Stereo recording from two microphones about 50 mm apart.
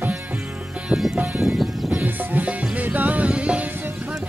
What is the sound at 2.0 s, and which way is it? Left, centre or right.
Music, right.